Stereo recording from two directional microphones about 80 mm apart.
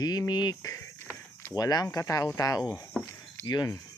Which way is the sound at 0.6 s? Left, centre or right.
Left.